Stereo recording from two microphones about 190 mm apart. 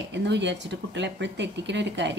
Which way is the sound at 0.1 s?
65° right (ahead or behind).